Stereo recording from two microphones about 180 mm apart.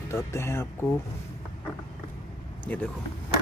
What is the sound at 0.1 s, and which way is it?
Speech, 15° left (ahead or behind).